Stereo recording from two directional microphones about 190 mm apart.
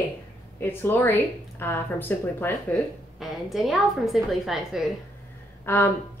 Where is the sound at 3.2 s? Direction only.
Centre (ahead or behind).